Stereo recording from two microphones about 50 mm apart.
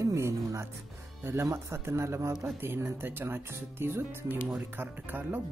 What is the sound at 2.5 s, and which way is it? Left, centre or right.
Speech, right.